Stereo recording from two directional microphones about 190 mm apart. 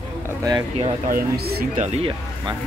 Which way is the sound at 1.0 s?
50° right (ahead or behind).